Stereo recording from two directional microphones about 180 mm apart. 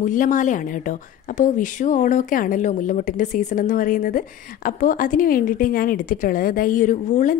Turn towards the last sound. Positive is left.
turn(degrees=45)  # may be behind; listen again after turning